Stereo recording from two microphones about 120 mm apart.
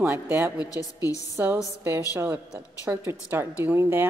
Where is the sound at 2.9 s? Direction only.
20° right (ahead or behind).